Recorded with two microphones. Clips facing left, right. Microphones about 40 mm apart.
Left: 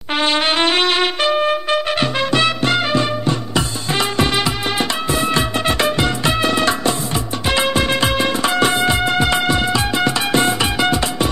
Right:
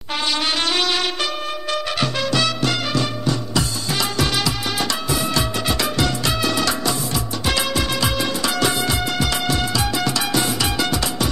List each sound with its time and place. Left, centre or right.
0.1 s trumpet: left
7.4 s music: left